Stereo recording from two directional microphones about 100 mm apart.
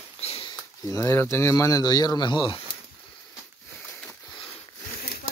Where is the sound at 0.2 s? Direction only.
90° left.